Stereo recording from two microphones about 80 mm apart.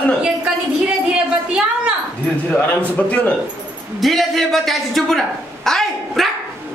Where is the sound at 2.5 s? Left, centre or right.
Centre.